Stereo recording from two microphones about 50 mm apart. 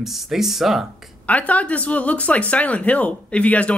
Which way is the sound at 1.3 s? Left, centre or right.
Left.